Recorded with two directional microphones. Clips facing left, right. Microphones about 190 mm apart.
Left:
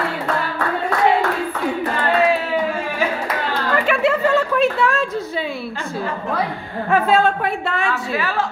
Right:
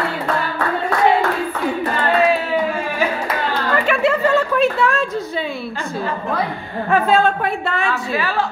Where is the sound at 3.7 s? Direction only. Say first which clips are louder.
Even; centre (ahead or behind).